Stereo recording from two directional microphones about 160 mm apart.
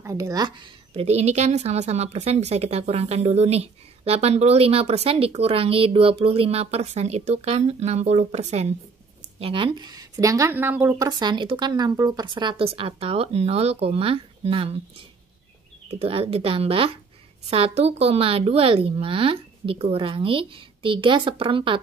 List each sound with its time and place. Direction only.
0.0 s speech: 20° right (ahead or behind)
1.0 s a woman's voice: 45° right (ahead or behind)
9.4 s a woman's voice: 35° right (ahead or behind); by 11.1 s 10° right (ahead or behind)
11.1 s a woman's voice: 25° right (ahead or behind)
15.9 s a woman's voice: 35° right (ahead or behind)